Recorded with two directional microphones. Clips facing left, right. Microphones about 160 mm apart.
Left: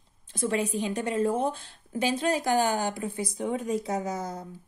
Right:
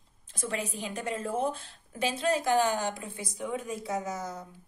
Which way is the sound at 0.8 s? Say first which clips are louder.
Left 7 dB; 35° left (ahead or behind).